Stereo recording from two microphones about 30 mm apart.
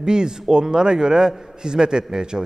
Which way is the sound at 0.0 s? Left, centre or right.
Right.